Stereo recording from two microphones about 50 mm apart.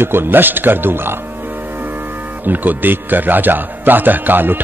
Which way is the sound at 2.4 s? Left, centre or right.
Right.